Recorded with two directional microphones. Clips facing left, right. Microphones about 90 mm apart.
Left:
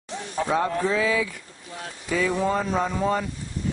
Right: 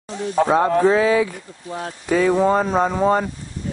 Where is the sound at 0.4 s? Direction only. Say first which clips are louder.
Right 8 dB; 45° right (ahead or behind).